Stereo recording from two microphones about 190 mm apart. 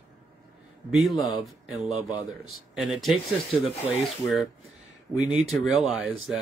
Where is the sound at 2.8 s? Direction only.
Centre (ahead or behind).